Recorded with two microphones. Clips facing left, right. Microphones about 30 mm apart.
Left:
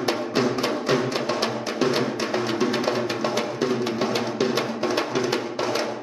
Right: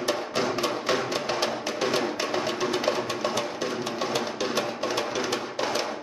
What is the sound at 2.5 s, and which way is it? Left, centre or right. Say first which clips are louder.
Music: left 3 dB; left.